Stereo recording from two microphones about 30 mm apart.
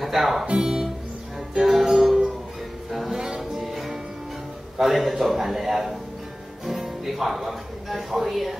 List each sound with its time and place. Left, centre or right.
0.0 s speech: centre
0.5 s music: right
1.6 s music: centre
3.3 s music: centre
4.7 s a man's voice: centre